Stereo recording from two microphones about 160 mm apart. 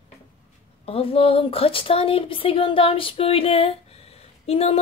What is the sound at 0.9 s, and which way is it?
A woman's voice, 35° left (ahead or behind).